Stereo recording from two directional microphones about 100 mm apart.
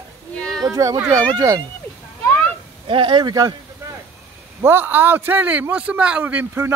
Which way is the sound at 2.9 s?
60° right (ahead or behind).